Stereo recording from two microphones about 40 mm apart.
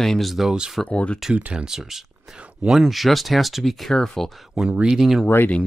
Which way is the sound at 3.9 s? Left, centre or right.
Centre.